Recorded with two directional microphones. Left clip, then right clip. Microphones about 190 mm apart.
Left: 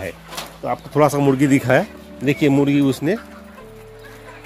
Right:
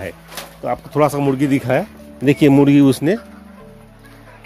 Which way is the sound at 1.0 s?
5° right (ahead or behind).